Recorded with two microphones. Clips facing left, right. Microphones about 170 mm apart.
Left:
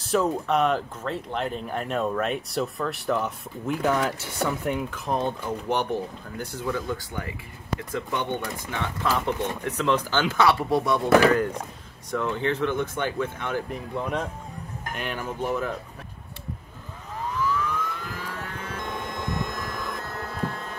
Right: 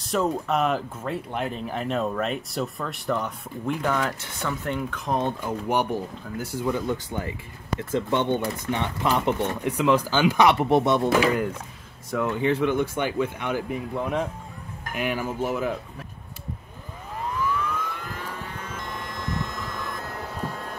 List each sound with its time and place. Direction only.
0.0 s speech: centre (ahead or behind)
6.3 s speech: 5° right (ahead or behind)
6.7 s speech: 25° right (ahead or behind)
12.1 s speech: 5° right (ahead or behind)
17.3 s emergency vehicle: 5° right (ahead or behind)
18.9 s vehicle: 20° left (ahead or behind)
20.3 s a sound: 10° right (ahead or behind)